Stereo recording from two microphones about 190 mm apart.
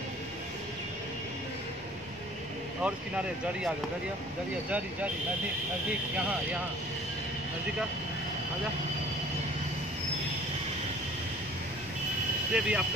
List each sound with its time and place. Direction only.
2.8 s speech: 5° right (ahead or behind)
12.5 s speech: 5° right (ahead or behind)